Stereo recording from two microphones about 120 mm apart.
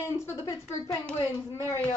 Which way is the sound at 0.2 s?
25° left (ahead or behind).